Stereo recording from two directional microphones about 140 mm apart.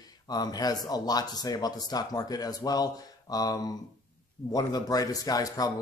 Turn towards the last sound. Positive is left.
turn(degrees=25)  # may be behind; listen again after turning